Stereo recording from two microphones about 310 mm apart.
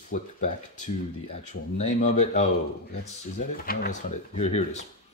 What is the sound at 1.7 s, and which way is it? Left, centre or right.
Speech, left.